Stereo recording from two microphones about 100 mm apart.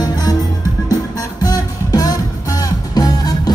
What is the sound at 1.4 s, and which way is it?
Music, 40° left (ahead or behind).